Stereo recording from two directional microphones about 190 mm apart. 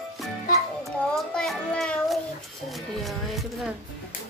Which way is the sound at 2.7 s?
Centre (ahead or behind).